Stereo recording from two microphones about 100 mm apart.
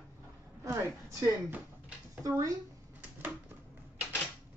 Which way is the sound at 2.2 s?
35° right (ahead or behind).